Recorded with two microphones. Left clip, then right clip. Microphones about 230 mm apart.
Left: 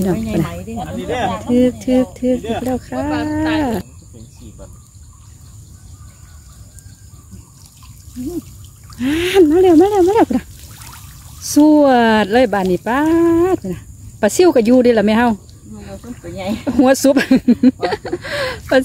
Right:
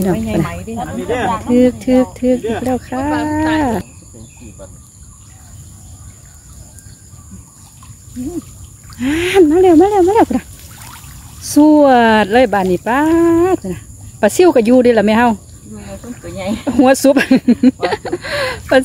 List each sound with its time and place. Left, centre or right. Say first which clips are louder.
0.0 s speech: right 2 dB; centre
0.8 s speech: right 3 dB; left
1.5 s speech: right 3 dB; centre
8.9 s speech: right 1 dB; centre
11.4 s speech: right 2 dB; centre
16.2 s speech: right 2 dB; centre
16.6 s speech: right 2 dB; centre